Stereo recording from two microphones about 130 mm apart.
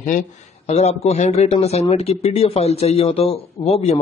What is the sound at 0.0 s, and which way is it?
Speech, 75° left (ahead or behind).